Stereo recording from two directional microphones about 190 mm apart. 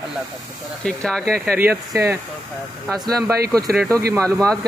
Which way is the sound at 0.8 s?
5° left (ahead or behind).